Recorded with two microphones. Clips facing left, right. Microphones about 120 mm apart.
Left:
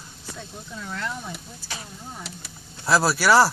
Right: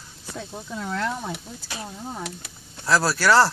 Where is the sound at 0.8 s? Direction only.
90° right.